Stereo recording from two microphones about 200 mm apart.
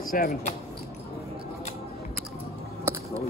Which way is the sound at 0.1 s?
50° left (ahead or behind).